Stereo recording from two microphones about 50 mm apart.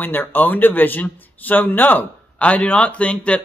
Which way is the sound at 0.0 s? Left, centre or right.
Left.